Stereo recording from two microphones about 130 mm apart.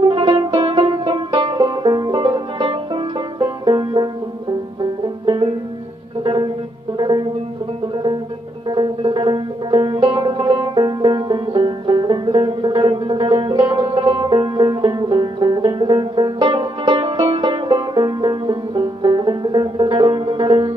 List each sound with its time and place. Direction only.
0.0 s music: 35° right (ahead or behind)
0.7 s banjo: 35° right (ahead or behind)
6.2 s music: 40° right (ahead or behind)
8.6 s banjo: 35° right (ahead or behind)